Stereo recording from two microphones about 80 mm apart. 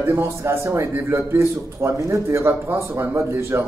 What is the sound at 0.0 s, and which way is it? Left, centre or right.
A man's voice, right.